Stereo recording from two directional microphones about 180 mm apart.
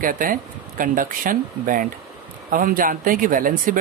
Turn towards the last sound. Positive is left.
turn(degrees=-50)  # may be behind; listen again after turning